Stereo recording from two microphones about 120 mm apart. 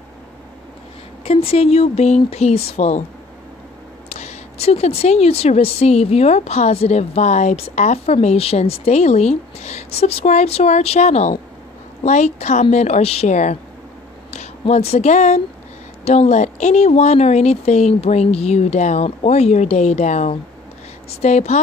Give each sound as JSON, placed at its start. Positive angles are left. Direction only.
{"t": 1.2, "sound": "a woman's voice", "side_deg": 55}
{"t": 4.1, "sound": "a woman's voice", "side_deg": 65}
{"t": 12.7, "sound": "speech", "side_deg": 65}
{"t": 14.7, "sound": "speech", "side_deg": 60}
{"t": 16.1, "sound": "a woman's voice", "side_deg": 65}